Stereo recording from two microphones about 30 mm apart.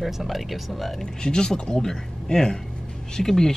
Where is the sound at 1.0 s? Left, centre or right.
Left.